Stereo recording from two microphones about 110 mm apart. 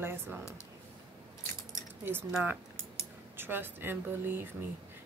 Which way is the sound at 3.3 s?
20° right (ahead or behind).